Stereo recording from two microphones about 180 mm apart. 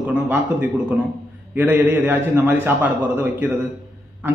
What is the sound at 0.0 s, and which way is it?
A man's voice, 10° right (ahead or behind).